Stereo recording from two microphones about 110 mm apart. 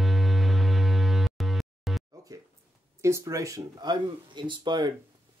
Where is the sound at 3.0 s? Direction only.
25° right (ahead or behind); by 4.9 s 40° right (ahead or behind).